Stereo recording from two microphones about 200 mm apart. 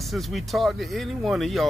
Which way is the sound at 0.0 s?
Centre (ahead or behind).